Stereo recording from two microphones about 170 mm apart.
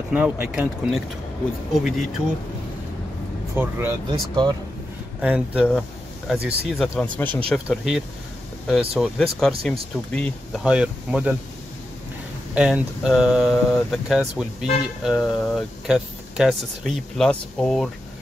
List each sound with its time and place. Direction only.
0.1 s speech: 10° right (ahead or behind)
3.5 s speech: 15° right (ahead or behind)
4.1 s speech: 25° right (ahead or behind)
5.2 s speech: 5° right (ahead or behind)
7.2 s speech: 10° left (ahead or behind)
7.6 s speech: 5° right (ahead or behind)
12.5 s speech: 5° right (ahead or behind)